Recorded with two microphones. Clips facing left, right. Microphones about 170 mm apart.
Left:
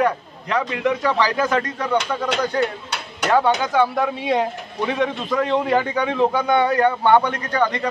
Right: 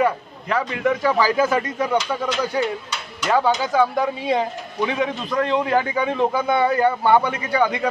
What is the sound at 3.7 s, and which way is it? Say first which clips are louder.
A man's voice: even; centre (ahead or behind).